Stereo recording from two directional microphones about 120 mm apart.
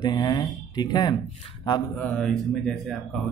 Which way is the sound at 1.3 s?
45° left (ahead or behind).